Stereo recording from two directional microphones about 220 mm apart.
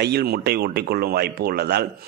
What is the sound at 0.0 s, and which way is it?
A man's voice, 45° right (ahead or behind).